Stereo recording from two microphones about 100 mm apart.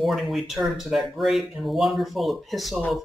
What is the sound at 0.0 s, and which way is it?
Speech, centre (ahead or behind).